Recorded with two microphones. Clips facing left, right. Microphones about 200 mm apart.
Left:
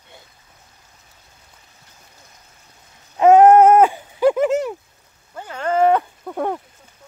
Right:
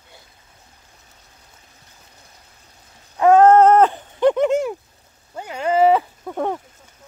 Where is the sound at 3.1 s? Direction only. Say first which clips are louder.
Left 2 dB; 20° left (ahead or behind); by 4.7 s 5° left (ahead or behind).